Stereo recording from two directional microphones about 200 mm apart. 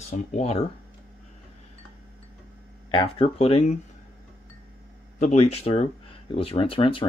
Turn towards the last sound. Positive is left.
turn(degrees=25)  # may be behind; listen again after turning